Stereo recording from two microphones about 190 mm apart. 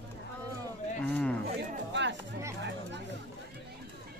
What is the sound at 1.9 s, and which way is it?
Music, 70° right (ahead or behind).